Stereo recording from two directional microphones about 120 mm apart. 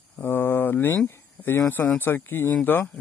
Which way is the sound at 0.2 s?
20° left (ahead or behind).